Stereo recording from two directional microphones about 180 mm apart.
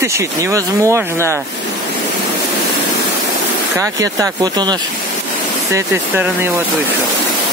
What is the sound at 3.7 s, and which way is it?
Speech, 15° right (ahead or behind).